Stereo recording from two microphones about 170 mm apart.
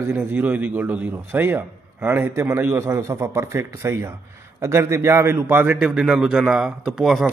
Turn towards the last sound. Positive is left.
turn(degrees=0)  # may be behind; listen again after turning